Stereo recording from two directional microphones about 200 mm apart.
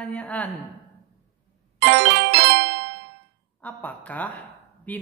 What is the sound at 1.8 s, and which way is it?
Music, 55° right (ahead or behind).